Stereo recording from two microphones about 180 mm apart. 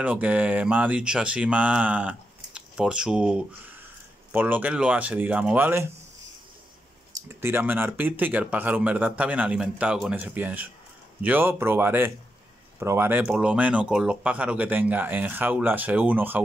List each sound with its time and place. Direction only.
0.0 s speech: 10° right (ahead or behind)
7.4 s speech: 10° right (ahead or behind)